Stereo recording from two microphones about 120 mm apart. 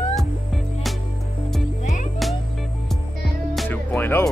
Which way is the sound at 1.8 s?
90° left.